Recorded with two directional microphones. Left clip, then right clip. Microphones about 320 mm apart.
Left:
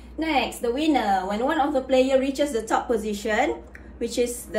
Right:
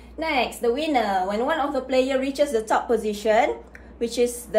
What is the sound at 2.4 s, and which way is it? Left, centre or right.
A woman's voice, centre.